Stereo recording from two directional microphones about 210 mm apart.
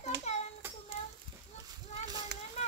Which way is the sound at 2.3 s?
55° right (ahead or behind).